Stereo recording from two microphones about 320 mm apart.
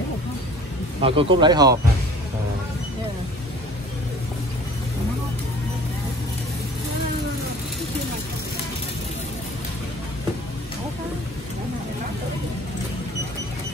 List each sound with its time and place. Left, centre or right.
1.0 s speech: centre